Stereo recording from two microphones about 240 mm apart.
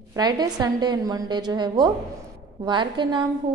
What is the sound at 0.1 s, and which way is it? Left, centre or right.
A woman's voice, centre.